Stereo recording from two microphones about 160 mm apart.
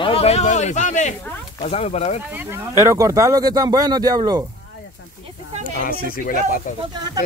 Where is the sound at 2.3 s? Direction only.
15° right (ahead or behind).